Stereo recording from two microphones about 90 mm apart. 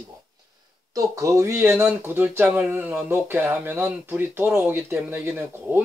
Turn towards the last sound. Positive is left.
turn(degrees=-20)  # may be behind; listen again after turning